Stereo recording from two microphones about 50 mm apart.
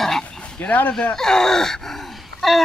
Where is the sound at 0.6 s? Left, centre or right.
Left.